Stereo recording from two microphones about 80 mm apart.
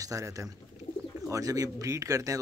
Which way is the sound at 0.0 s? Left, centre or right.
Right.